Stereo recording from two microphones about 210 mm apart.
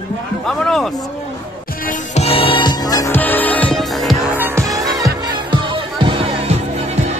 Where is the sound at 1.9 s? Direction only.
30° left (ahead or behind); by 4.5 s centre (ahead or behind).